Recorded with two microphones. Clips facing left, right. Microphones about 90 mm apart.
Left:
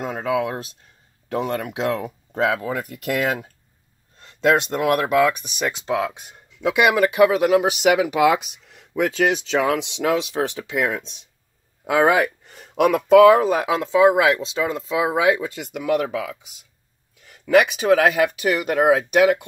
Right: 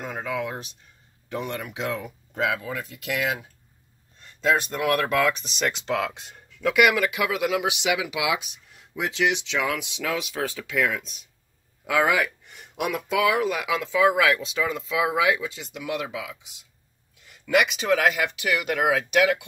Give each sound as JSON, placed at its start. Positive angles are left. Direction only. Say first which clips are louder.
{"t": 0.2, "sound": "speech", "louder": "left 7 dB", "side_deg": 30}
{"t": 4.8, "sound": "speech", "louder": "left 4 dB", "side_deg": 15}
{"t": 6.8, "sound": "speech", "louder": "left 6 dB", "side_deg": 35}
{"t": 9.7, "sound": "speech", "louder": "left 7 dB", "side_deg": 25}
{"t": 12.7, "sound": "speech", "louder": "left 12 dB", "side_deg": 50}
{"t": 15.5, "sound": "speech", "louder": "left 9 dB", "side_deg": 55}